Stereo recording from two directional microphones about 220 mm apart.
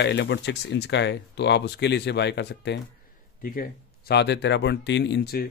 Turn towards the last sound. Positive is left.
turn(degrees=50)  # may be behind; listen again after turning